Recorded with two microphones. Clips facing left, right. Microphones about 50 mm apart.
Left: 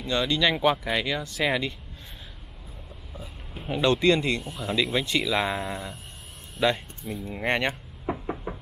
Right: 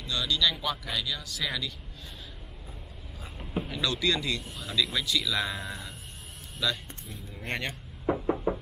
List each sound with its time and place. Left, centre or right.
0.0 s speech: left
3.6 s speech: left
8.1 s knock: centre